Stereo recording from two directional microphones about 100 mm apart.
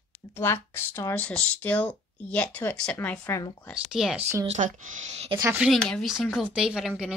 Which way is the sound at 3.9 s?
5° right (ahead or behind).